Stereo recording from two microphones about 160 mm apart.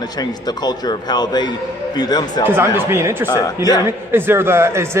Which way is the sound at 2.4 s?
15° right (ahead or behind).